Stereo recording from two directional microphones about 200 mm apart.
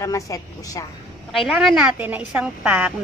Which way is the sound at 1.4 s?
Centre (ahead or behind).